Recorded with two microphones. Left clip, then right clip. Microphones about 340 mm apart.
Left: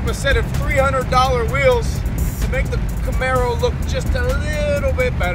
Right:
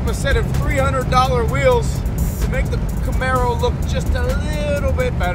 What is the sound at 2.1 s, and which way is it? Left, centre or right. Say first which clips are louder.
Music: right 1 dB; centre.